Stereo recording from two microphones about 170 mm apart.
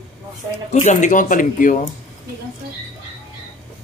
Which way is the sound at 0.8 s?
45° left (ahead or behind).